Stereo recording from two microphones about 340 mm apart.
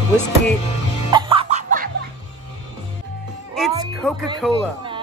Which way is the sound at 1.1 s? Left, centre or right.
Centre.